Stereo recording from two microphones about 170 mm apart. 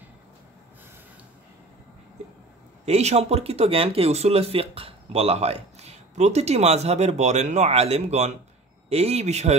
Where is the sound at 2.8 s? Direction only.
40° right (ahead or behind).